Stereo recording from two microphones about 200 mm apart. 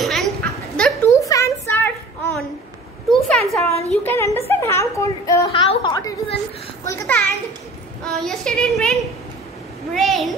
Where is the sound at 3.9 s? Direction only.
10° left (ahead or behind).